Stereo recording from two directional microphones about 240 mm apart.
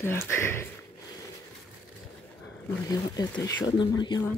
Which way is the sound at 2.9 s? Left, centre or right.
Centre.